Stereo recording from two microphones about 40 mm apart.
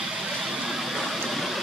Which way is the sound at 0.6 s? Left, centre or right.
Centre.